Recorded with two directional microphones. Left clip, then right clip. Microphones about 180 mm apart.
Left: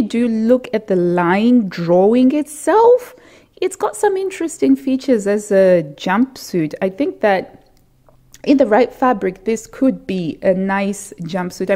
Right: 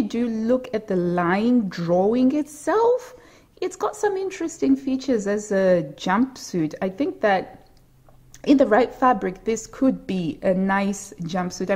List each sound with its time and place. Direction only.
0.1 s a woman's voice: 30° left (ahead or behind)